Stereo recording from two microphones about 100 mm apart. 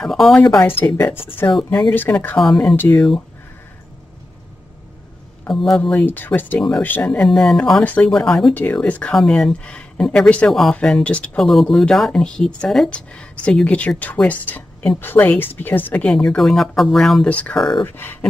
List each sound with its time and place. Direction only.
0.0 s speech: 5° left (ahead or behind)
0.7 s speech: 20° left (ahead or behind)
2.3 s speech: 5° left (ahead or behind)
2.7 s speech: 20° left (ahead or behind)
5.5 s speech: 5° left (ahead or behind)
5.8 s speech: 15° left (ahead or behind)
7.2 s speech: 5° left (ahead or behind)
7.8 s speech: 15° left (ahead or behind)
17.6 s speech: 5° left (ahead or behind)
17.8 s speech: 20° left (ahead or behind)